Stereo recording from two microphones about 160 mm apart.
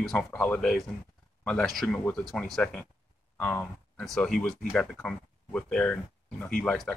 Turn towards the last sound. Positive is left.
turn(degrees=5)  # may be behind; listen again after turning